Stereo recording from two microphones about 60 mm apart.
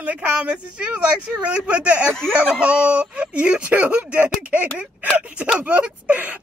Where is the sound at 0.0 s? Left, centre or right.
Right.